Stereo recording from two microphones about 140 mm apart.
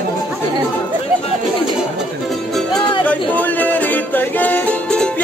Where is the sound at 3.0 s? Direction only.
10° left (ahead or behind).